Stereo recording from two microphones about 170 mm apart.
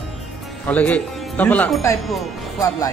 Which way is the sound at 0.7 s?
10° left (ahead or behind).